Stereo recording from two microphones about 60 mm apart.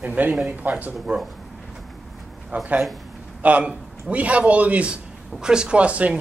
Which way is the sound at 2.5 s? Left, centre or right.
Right.